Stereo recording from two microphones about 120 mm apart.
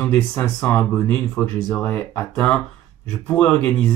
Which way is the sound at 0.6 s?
20° left (ahead or behind).